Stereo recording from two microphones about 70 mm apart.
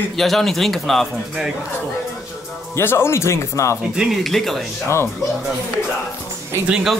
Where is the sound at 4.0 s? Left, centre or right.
Centre.